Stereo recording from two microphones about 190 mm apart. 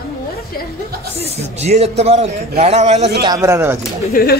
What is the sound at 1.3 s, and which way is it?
A man's voice, 35° right (ahead or behind).